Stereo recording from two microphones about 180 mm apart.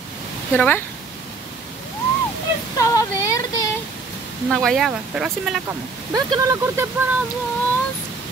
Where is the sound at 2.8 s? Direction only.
20° left (ahead or behind).